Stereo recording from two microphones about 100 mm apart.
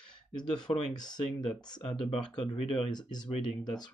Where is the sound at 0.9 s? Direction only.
45° left (ahead or behind).